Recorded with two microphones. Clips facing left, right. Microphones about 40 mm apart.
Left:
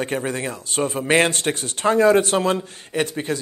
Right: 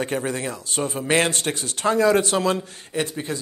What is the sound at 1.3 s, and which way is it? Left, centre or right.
A man's voice, left.